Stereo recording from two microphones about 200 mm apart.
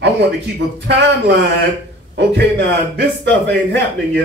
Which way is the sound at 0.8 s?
60° right (ahead or behind).